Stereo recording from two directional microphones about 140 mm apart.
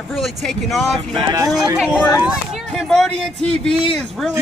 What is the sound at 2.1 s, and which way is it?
A man's voice, 5° right (ahead or behind).